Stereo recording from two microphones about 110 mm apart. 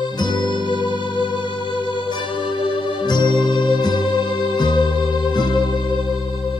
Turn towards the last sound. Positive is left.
turn(degrees=45)  # may be behind; listen again after turning